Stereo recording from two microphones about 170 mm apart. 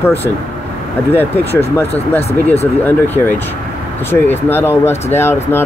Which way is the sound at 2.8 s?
10° left (ahead or behind).